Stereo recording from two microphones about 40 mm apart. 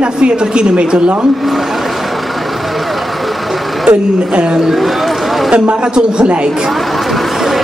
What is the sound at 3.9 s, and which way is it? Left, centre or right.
A man's voice, right.